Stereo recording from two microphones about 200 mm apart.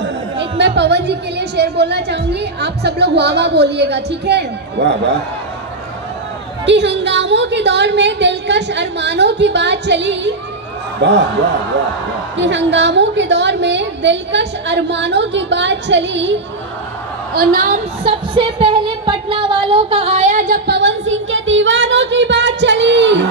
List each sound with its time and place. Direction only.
0.0 s a woman's voice: 60° right (ahead or behind)
6.6 s a woman's voice: 60° right (ahead or behind)
12.4 s a woman's voice: 65° right (ahead or behind)
17.4 s a woman's voice: 40° right (ahead or behind)
18.0 s a woman's voice: 25° right (ahead or behind); by 23.2 s 65° right (ahead or behind)